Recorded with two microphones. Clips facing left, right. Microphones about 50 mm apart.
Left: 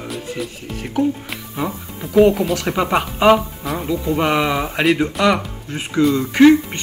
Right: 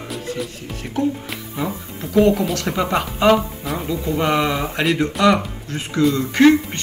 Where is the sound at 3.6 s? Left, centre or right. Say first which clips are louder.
Left 1 dB; centre.